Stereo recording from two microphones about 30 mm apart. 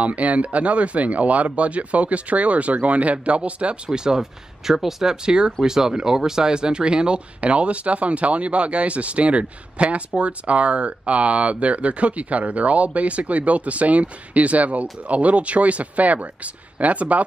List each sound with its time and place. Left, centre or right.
0.0 s speech: right
3.9 s speech: right
4.2 s speech: centre
5.1 s speech: right
7.3 s speech: right